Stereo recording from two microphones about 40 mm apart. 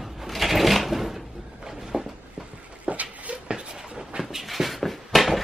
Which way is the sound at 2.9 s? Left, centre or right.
Right.